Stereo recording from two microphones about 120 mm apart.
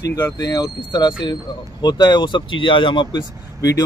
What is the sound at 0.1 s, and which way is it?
Speech, 30° left (ahead or behind).